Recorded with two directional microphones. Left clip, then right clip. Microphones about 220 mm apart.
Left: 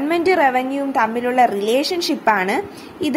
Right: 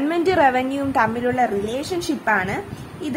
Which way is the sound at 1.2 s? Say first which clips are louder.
Left 5 dB; 20° left (ahead or behind).